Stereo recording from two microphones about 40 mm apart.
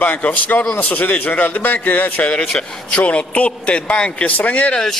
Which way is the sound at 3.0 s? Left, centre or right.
Left.